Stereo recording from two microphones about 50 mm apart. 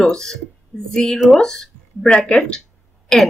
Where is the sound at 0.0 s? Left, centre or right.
Centre.